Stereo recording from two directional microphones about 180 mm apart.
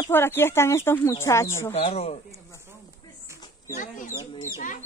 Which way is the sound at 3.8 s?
45° left (ahead or behind).